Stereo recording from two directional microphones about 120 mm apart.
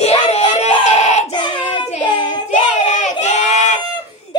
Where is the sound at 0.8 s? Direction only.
65° left (ahead or behind).